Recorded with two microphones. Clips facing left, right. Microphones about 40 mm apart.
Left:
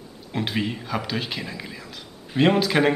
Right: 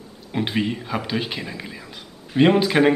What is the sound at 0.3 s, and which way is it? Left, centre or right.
A man's voice, centre.